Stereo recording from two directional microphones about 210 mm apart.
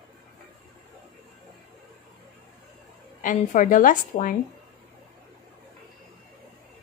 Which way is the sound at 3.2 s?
40° left (ahead or behind).